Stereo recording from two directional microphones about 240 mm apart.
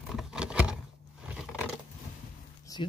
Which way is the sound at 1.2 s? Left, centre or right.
Centre.